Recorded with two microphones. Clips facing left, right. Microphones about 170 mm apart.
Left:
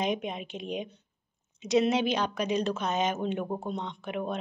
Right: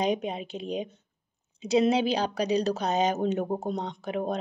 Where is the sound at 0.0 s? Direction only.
35° right (ahead or behind).